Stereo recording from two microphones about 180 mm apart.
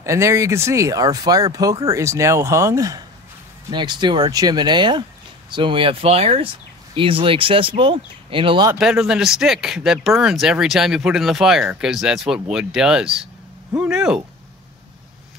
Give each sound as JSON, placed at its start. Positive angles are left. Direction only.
{"t": 0.0, "sound": "speech", "side_deg": -15}
{"t": 8.7, "sound": "speech", "side_deg": -5}